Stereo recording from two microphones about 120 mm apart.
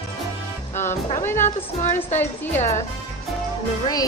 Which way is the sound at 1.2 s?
20° left (ahead or behind).